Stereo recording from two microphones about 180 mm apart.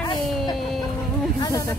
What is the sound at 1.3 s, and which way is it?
Snake, 20° left (ahead or behind).